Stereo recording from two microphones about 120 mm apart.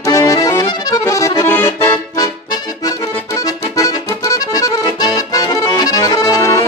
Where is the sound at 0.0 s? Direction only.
30° left (ahead or behind).